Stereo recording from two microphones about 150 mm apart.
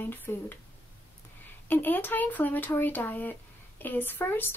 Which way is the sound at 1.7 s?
10° left (ahead or behind).